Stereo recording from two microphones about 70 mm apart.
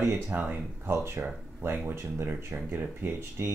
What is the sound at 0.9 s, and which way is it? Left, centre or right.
Speech, right.